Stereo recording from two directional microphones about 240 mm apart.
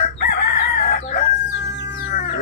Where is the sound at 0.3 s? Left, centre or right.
Left.